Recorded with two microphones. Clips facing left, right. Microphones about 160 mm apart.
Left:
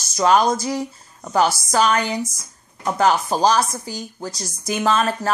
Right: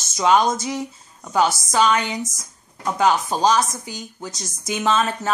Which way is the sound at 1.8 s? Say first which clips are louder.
Even; 40° left (ahead or behind).